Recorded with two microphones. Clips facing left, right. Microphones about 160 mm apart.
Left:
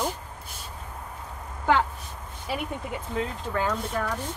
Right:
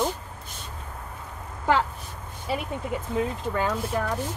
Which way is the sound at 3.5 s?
5° right (ahead or behind).